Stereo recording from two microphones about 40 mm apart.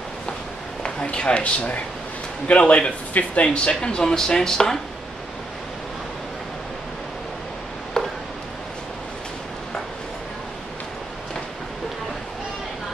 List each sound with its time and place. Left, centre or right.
1.0 s speech: left
3.4 s speech: left
8.0 s a sound: centre